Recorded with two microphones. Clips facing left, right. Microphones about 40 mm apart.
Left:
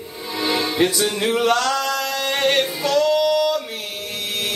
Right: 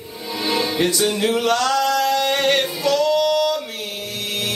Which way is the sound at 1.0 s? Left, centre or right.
Centre.